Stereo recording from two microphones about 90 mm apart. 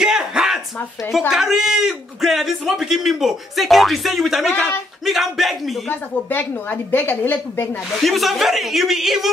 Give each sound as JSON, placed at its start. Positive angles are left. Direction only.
{"t": 0.0, "sound": "a sound", "side_deg": -5}
{"t": 1.3, "sound": "a man's voice", "side_deg": -5}
{"t": 5.9, "sound": "a woman's voice", "side_deg": 20}
{"t": 7.9, "sound": "a man's voice", "side_deg": 0}